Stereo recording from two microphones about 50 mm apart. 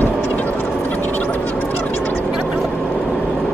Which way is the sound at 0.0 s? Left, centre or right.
Left.